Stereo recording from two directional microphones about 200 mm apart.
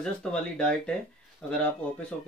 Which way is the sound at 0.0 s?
5° left (ahead or behind).